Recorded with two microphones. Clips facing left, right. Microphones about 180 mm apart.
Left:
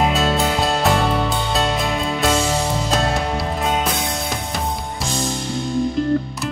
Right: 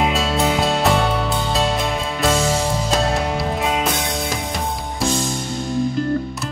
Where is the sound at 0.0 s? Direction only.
Centre (ahead or behind).